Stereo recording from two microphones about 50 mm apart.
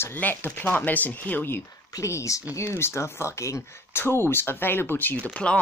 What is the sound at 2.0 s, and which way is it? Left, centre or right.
Speech, left.